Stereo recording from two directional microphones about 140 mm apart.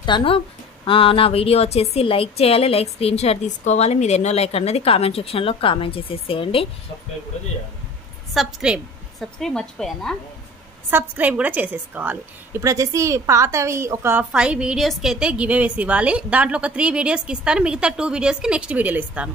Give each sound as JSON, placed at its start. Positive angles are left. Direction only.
{"t": 0.0, "sound": "a woman's voice", "side_deg": 35}
{"t": 8.3, "sound": "a woman's voice", "side_deg": 0}
{"t": 10.9, "sound": "a woman's voice", "side_deg": -15}
{"t": 14.3, "sound": "a woman's voice", "side_deg": -5}